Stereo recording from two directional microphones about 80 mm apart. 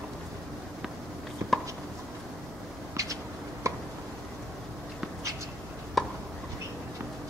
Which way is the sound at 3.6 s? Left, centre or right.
Right.